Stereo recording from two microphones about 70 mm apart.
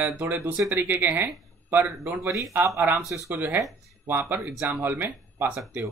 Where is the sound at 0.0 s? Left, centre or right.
Right.